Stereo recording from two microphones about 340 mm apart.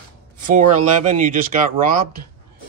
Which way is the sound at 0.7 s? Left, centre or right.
Right.